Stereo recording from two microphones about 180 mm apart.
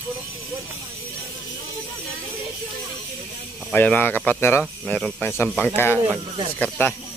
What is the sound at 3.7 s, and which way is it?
Speech, 10° left (ahead or behind).